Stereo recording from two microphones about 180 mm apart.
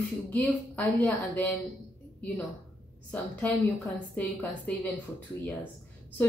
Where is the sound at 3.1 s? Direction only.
10° left (ahead or behind).